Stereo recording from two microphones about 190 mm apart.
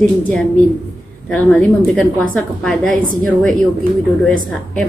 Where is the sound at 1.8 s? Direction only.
5° left (ahead or behind).